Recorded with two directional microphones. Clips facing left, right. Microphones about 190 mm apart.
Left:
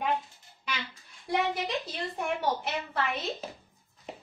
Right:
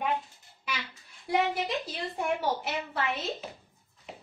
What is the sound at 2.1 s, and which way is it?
Speech, 5° right (ahead or behind).